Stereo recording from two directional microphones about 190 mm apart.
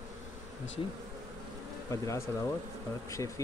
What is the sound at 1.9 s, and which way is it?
Speech, 15° left (ahead or behind).